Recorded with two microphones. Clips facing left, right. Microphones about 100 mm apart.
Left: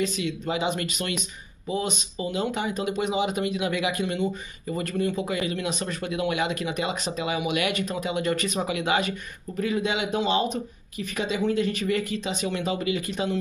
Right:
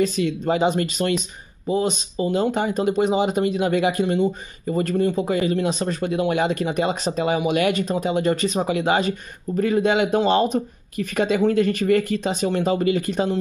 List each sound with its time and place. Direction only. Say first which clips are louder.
0.0 s speech: right 6 dB; 40° right (ahead or behind)